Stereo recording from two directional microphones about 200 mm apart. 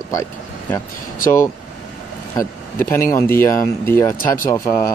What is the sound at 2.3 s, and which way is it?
Speech, 10° left (ahead or behind).